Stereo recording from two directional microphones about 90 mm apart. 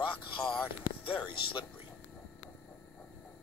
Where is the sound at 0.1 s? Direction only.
70° left (ahead or behind).